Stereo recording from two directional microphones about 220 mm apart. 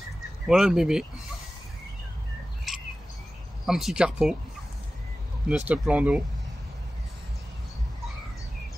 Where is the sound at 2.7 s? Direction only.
Centre (ahead or behind).